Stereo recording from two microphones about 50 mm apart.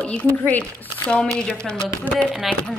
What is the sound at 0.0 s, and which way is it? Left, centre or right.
Speech, left.